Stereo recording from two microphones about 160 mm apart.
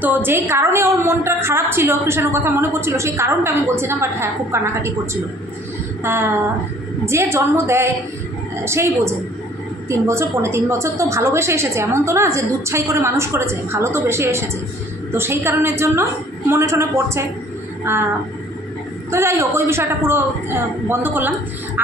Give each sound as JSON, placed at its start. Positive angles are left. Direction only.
{"t": 0.0, "sound": "a woman's voice", "side_deg": -10}
{"t": 19.0, "sound": "a woman's voice", "side_deg": -15}